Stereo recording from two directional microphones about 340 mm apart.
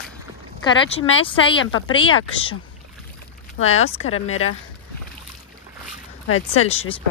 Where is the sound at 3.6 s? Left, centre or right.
Centre.